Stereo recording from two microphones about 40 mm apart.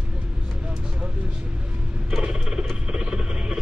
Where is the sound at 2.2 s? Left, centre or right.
Right.